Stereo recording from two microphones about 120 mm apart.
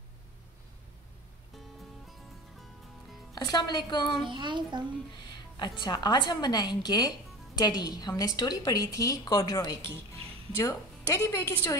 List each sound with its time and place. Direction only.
3.3 s speech: 35° left (ahead or behind)
4.2 s a child's voice: 40° right (ahead or behind)
5.6 s speech: 40° left (ahead or behind)
9.8 s speech: 20° left (ahead or behind)